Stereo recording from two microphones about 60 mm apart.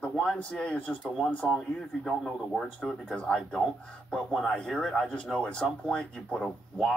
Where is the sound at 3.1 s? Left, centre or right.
Centre.